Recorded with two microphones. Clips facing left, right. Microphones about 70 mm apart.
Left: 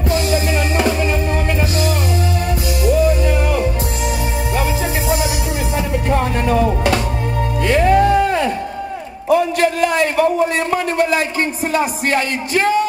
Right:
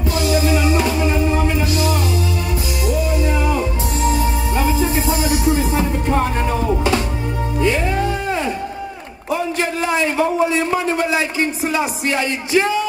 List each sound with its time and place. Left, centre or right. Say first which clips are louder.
0.1 s music: even; left
1.0 s music: right 1 dB; left
3.2 s music: left 1 dB; left
5.3 s music: right 4 dB; right
6.0 s music: left 1 dB; left
10.5 s a sound: even; left